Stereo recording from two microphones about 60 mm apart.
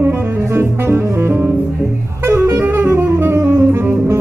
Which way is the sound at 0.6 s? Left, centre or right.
Right.